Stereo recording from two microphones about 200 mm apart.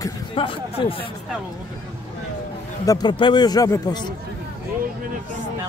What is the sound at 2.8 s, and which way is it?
A man's voice, 20° left (ahead or behind).